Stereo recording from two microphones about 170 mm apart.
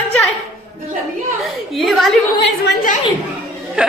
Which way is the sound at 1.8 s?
Centre (ahead or behind).